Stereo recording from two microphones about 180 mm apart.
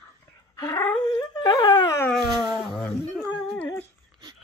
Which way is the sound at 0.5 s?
20° left (ahead or behind).